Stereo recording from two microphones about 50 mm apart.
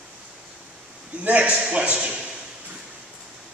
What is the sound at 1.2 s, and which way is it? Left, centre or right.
Speech, right.